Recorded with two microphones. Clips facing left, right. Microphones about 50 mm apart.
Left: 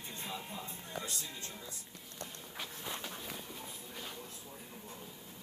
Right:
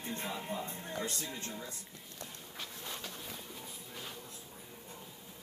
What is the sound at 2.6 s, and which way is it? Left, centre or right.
Walk, centre.